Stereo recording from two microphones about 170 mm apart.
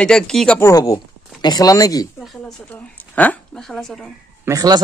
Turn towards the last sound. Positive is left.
turn(degrees=-20)  # may be behind; listen again after turning